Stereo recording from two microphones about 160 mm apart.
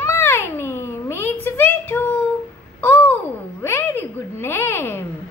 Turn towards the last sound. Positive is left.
turn(degrees=15)  # may be behind; listen again after turning